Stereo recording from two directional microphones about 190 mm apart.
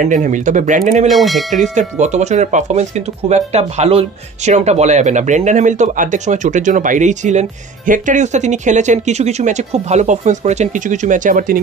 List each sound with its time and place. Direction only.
0.0 s speech: 40° right (ahead or behind)
1.0 s speech: centre (ahead or behind)
1.6 s speech: 40° right (ahead or behind)